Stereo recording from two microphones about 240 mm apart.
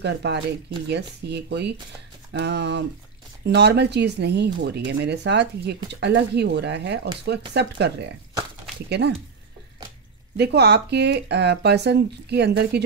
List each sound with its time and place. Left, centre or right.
0.0 s speech: right
10.3 s speech: right